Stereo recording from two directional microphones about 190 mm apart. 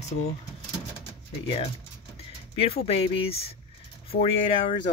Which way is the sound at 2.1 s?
30° left (ahead or behind).